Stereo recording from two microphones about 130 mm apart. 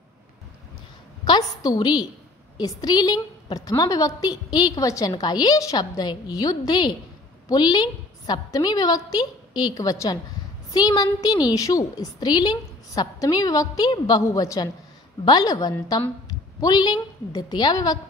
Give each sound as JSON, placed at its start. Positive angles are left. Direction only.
{"t": 1.2, "sound": "a woman's voice", "side_deg": 35}